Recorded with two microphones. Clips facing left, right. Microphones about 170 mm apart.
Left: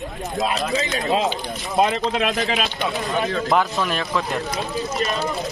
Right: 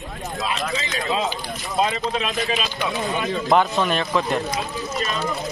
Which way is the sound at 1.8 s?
60° left (ahead or behind).